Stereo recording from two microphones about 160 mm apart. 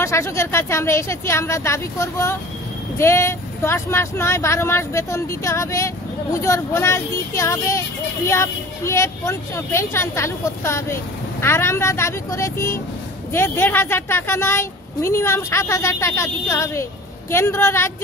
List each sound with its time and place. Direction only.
0.0 s a woman's voice: 15° left (ahead or behind)